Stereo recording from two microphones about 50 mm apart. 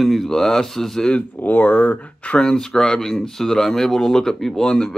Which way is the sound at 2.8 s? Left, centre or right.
Centre.